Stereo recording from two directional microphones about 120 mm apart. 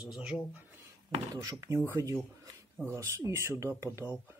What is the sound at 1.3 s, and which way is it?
Speech, 30° right (ahead or behind).